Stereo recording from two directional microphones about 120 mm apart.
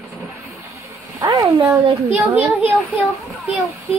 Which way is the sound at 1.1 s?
30° right (ahead or behind).